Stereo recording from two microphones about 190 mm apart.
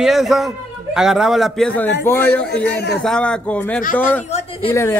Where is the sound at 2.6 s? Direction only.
60° left (ahead or behind).